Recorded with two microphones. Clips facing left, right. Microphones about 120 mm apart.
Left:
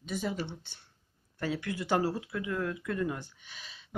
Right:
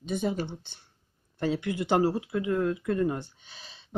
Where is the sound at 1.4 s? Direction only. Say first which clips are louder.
Right 5 dB; 25° right (ahead or behind).